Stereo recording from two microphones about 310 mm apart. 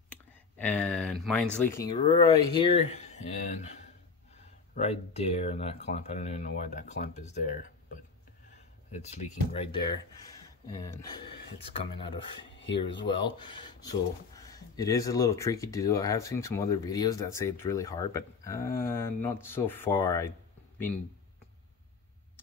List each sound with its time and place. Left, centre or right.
0.6 s speech: centre; by 3.6 s left
4.7 s speech: centre
12.4 s a sound: left
13.0 s speech: centre